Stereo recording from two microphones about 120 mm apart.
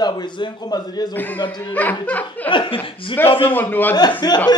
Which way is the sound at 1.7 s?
15° left (ahead or behind).